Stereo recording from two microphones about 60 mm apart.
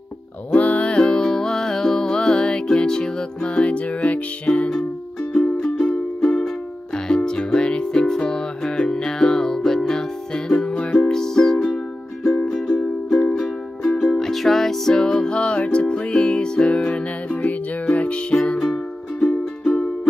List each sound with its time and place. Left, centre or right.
0.5 s music: left